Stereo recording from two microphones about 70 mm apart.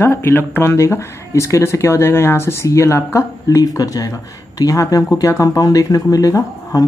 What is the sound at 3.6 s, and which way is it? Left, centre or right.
Speech, left.